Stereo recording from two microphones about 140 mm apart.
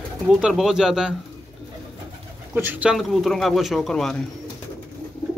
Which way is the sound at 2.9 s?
Centre (ahead or behind).